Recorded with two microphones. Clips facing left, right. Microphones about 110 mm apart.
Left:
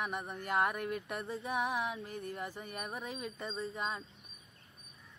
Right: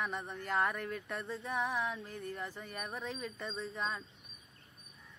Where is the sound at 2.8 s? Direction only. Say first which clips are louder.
Right 2 dB; 5° left (ahead or behind).